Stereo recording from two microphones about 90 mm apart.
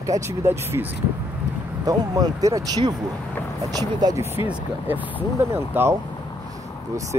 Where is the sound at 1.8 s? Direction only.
45° right (ahead or behind).